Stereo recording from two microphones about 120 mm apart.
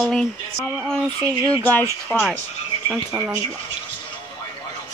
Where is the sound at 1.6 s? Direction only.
15° left (ahead or behind).